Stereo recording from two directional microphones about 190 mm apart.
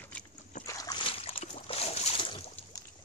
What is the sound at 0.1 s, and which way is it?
Trickle, 5° left (ahead or behind).